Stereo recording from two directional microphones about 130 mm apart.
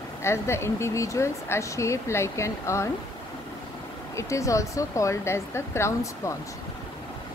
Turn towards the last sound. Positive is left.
turn(degrees=20)  # may be behind; listen again after turning